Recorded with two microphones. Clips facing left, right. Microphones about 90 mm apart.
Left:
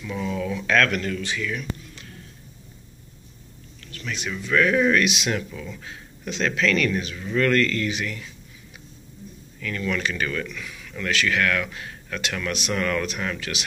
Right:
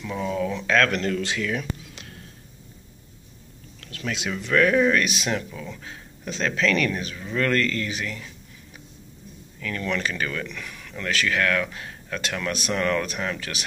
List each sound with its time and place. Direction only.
0.0 s speech: 25° right (ahead or behind)
1.2 s speech: 90° right
4.3 s speech: 45° right (ahead or behind)
4.7 s speech: 35° right (ahead or behind)
5.3 s speech: 25° right (ahead or behind)
6.2 s speech: 35° right (ahead or behind)
9.6 s speech: 35° right (ahead or behind)
10.6 s a sound: 50° right (ahead or behind)
10.9 s speech: 35° right (ahead or behind)